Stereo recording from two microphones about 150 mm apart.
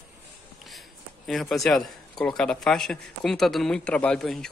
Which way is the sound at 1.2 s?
Centre (ahead or behind).